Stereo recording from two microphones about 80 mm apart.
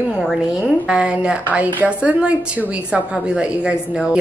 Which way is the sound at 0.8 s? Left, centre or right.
Centre.